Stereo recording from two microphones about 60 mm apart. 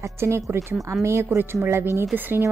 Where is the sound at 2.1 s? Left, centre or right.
Right.